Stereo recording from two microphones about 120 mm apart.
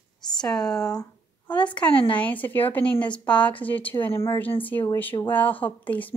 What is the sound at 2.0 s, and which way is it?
Speech, 10° left (ahead or behind).